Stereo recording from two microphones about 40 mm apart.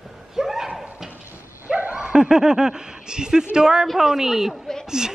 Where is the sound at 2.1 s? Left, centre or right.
Centre.